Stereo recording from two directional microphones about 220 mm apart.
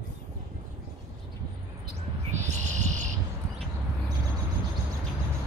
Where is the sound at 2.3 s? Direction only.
30° right (ahead or behind).